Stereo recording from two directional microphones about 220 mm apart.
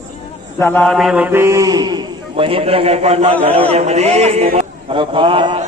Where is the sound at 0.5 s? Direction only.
10° left (ahead or behind); by 4.5 s 30° right (ahead or behind).